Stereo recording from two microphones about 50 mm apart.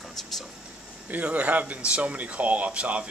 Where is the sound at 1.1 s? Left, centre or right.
Right.